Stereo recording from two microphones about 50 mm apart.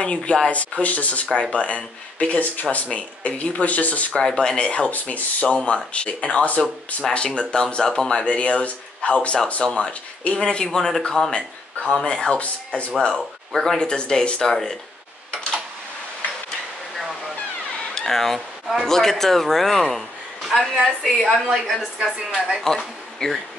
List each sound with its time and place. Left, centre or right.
0.0 s speech: centre
4.2 s speech: centre
4.9 s speech: left
7.0 s speech: centre; by 12.9 s left
13.5 s speech: centre
17.9 s a man's voice: centre
22.1 s speech: centre
22.6 s speech: centre